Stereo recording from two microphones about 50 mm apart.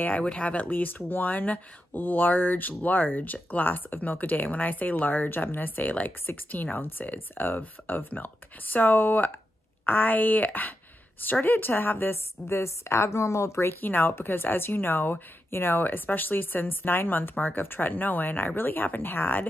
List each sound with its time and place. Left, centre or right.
0.0 s a woman's voice: left
13.7 s speech: left